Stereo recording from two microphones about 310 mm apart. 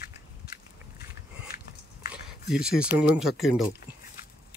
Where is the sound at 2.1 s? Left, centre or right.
Centre.